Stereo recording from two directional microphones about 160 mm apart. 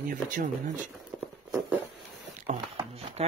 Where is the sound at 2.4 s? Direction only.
40° right (ahead or behind).